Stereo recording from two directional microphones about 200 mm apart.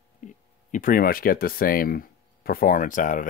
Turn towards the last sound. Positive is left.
turn(degrees=40)  # may be behind; listen again after turning